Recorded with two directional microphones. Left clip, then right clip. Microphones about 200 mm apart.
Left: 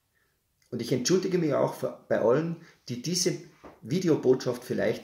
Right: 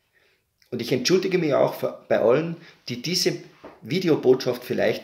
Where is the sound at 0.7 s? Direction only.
15° left (ahead or behind).